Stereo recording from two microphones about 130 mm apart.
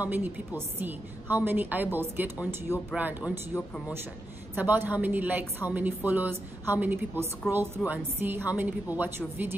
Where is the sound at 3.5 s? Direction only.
15° left (ahead or behind).